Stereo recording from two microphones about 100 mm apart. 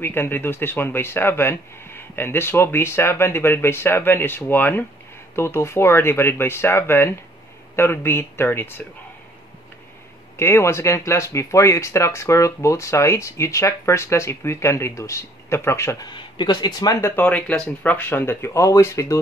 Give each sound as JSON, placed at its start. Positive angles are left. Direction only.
{"t": 0.0, "sound": "speech", "side_deg": 20}
{"t": 10.3, "sound": "speech", "side_deg": 25}
{"t": 16.1, "sound": "speech", "side_deg": 50}
{"t": 17.0, "sound": "speech", "side_deg": 20}